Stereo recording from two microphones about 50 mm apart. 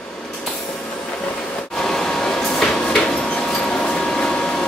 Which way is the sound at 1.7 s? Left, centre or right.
Centre.